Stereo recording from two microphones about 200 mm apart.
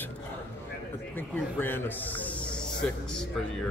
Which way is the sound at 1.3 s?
10° left (ahead or behind).